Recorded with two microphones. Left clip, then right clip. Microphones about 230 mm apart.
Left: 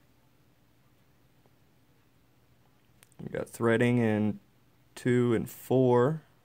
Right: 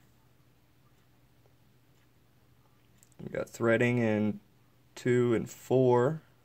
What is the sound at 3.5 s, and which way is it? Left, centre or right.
Speech, centre.